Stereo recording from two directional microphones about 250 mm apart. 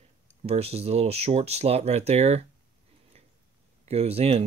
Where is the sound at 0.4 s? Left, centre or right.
Right.